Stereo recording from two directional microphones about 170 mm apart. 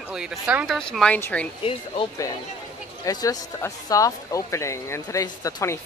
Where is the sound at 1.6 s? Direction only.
35° left (ahead or behind).